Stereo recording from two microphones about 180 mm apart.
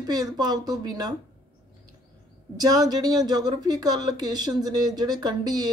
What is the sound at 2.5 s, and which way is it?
Speech, 20° right (ahead or behind).